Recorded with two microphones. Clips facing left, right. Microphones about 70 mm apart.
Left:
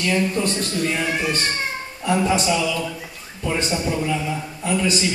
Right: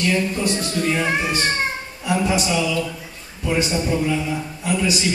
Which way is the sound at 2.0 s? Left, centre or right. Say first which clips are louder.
Left 1 dB; centre.